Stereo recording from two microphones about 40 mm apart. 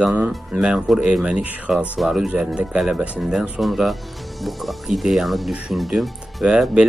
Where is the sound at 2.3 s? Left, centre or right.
Right.